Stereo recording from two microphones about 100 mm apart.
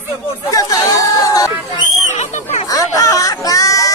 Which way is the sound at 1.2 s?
35° left (ahead or behind).